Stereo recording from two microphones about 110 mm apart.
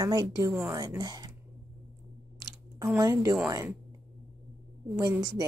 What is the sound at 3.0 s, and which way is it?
Speech, 30° right (ahead or behind).